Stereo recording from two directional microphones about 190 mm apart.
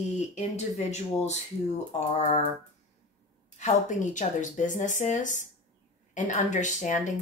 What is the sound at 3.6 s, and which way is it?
A woman's voice, 40° left (ahead or behind).